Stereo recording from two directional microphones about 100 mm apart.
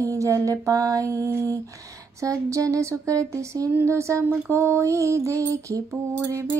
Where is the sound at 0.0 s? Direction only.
30° right (ahead or behind).